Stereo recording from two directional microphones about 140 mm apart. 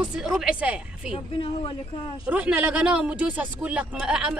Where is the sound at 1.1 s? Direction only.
40° left (ahead or behind).